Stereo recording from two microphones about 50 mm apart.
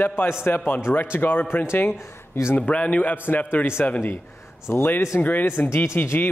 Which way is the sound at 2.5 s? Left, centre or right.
Left.